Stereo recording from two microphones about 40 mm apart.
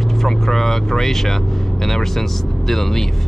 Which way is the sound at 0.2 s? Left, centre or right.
Centre.